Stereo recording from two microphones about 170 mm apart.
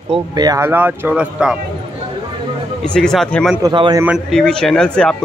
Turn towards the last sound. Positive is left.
turn(degrees=5)  # may be behind; listen again after turning